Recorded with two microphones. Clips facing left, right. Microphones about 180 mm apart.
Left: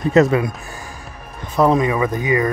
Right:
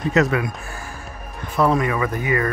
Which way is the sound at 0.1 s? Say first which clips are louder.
Left 5 dB; 30° left (ahead or behind).